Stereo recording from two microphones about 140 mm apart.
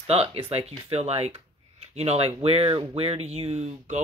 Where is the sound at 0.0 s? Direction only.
45° right (ahead or behind).